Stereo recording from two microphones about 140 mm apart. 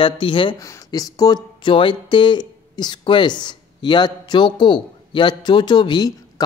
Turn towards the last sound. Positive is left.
turn(degrees=30)  # may be behind; listen again after turning